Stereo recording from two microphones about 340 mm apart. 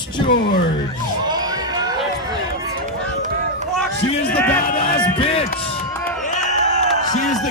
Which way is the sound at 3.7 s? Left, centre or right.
Centre.